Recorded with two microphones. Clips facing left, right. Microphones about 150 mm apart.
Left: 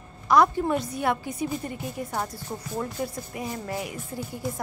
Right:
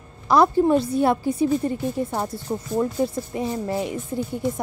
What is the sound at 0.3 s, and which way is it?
A woman's voice, 30° right (ahead or behind).